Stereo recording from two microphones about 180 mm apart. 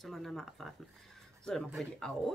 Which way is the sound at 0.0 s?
Centre (ahead or behind).